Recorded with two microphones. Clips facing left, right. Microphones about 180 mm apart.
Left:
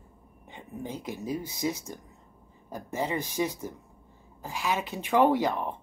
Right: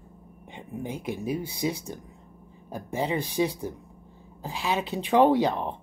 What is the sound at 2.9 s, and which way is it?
Speech, 15° right (ahead or behind).